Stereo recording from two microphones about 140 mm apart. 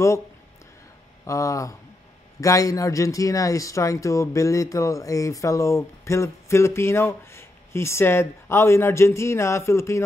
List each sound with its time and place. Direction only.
1.2 s speech: 20° left (ahead or behind)